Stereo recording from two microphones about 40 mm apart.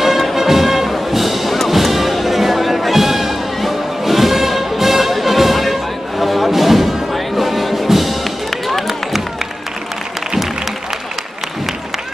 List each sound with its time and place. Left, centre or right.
0.0 s music: centre